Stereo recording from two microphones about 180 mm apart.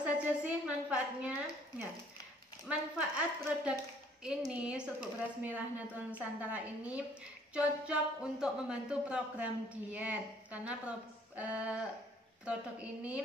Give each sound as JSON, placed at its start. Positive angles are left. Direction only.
{"t": 0.0, "sound": "a woman's voice", "side_deg": -5}